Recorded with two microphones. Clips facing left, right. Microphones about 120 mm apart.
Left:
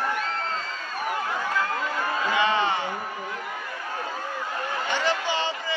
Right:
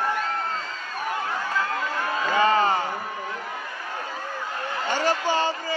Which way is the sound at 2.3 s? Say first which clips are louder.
Right 4 dB; 40° right (ahead or behind).